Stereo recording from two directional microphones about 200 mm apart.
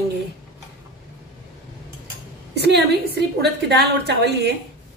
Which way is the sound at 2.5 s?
55° right (ahead or behind).